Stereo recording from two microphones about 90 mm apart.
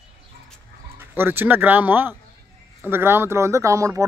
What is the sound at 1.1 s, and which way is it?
Speech, 25° right (ahead or behind).